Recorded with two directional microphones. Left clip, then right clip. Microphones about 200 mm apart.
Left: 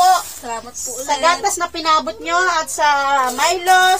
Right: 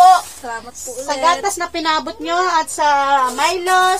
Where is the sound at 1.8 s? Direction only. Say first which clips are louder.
Left 3 dB; 30° right (ahead or behind).